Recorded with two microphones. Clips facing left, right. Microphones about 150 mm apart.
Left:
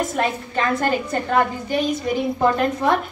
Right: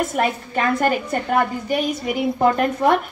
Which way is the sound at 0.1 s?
10° right (ahead or behind).